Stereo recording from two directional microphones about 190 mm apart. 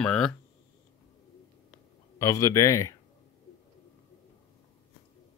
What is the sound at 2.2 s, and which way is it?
Speech, 15° left (ahead or behind).